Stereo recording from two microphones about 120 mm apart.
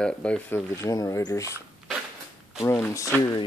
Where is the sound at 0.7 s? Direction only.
25° left (ahead or behind).